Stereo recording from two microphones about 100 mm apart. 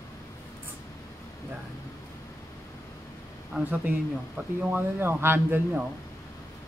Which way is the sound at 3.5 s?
15° right (ahead or behind).